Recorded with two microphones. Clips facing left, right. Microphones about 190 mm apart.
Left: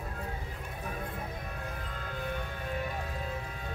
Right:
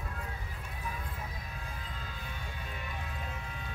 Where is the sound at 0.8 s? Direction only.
55° left (ahead or behind).